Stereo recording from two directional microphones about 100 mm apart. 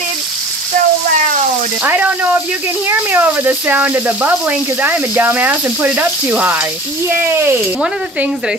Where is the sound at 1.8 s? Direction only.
15° right (ahead or behind).